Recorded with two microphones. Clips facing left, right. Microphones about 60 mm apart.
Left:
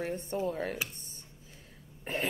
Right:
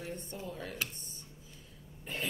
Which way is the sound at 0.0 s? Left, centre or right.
Left.